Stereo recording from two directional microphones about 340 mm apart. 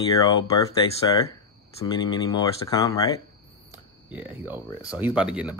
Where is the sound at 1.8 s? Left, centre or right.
Centre.